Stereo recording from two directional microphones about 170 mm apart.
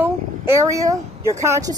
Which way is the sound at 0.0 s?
15° right (ahead or behind).